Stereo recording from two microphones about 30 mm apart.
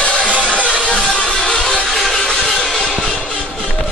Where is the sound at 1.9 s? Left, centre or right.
Centre.